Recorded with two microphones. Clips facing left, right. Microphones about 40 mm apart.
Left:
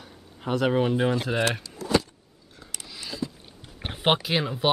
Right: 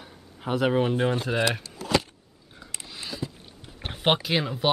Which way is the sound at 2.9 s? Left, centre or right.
Right.